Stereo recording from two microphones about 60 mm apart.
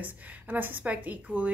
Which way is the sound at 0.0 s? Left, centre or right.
Right.